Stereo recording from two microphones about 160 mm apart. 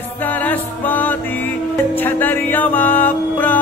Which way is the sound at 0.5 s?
10° left (ahead or behind).